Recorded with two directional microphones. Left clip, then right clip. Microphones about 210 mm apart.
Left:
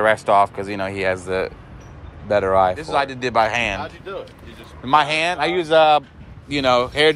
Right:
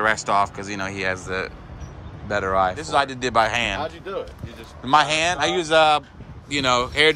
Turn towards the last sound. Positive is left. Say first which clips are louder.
# left 2 dB
turn(degrees=-5)  # may be behind; listen again after turning